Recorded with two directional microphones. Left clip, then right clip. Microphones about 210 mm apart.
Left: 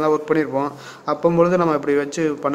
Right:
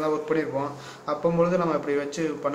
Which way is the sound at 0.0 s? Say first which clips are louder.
Left 7 dB; 55° left (ahead or behind).